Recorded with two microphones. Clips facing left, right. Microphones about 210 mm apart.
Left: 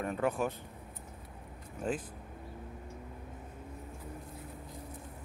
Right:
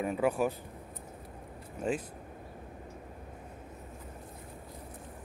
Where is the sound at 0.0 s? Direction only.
5° right (ahead or behind).